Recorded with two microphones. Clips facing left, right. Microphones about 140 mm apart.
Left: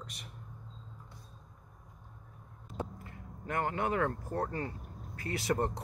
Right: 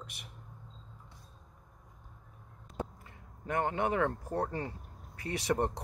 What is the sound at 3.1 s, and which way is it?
Speech, 20° right (ahead or behind).